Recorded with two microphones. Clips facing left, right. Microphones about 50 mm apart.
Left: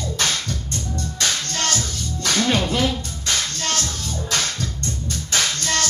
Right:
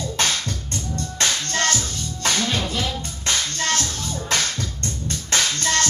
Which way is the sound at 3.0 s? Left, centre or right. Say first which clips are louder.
Even; right.